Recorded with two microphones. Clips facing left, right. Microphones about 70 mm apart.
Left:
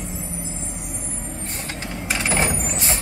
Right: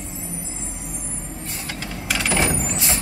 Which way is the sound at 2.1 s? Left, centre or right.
Left.